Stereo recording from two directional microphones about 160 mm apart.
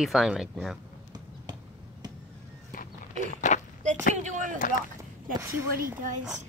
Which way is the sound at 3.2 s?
50° left (ahead or behind).